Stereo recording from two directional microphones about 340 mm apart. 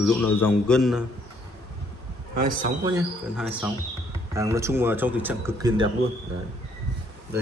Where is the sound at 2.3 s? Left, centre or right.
Right.